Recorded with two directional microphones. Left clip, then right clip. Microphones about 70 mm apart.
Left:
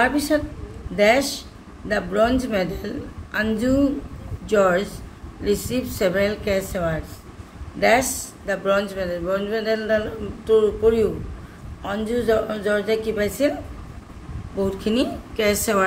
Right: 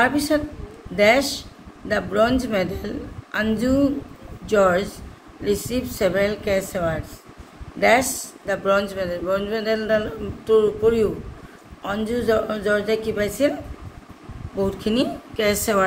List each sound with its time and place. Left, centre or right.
0.3 s a man's voice: right
4.5 s a woman's voice: centre
7.8 s a man's voice: right
14.8 s speech: centre
15.3 s a woman's voice: centre